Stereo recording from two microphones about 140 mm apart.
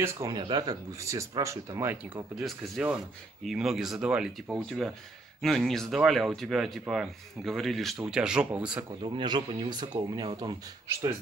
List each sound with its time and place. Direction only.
0.0 s speech: 30° right (ahead or behind)
2.4 s a man's voice: 5° right (ahead or behind)
9.0 s speech: 35° right (ahead or behind)